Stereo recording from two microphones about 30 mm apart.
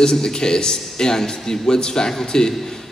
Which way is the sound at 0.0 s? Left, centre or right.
Left.